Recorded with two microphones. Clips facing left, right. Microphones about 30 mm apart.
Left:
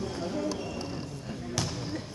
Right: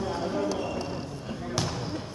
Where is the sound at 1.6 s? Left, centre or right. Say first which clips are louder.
Right 2 dB; centre.